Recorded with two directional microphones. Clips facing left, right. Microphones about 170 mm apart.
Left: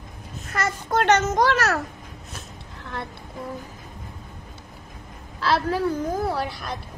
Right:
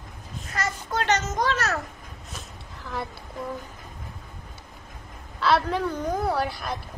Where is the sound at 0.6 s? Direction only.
60° left (ahead or behind).